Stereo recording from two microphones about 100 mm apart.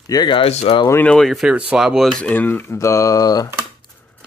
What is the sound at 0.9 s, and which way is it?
Speech, 15° left (ahead or behind).